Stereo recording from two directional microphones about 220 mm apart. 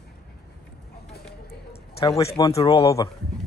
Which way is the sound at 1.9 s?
15° left (ahead or behind).